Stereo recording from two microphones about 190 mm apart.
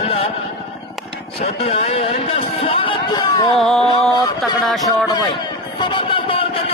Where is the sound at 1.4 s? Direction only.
35° left (ahead or behind).